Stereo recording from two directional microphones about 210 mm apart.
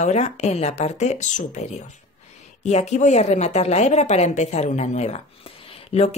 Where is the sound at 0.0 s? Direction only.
30° left (ahead or behind).